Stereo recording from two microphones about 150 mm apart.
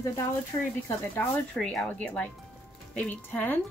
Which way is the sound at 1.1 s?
10° left (ahead or behind).